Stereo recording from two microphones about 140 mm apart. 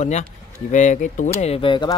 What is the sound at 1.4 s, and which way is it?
Speech, 40° left (ahead or behind).